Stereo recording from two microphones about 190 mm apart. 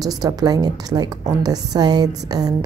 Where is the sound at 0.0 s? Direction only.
20° right (ahead or behind).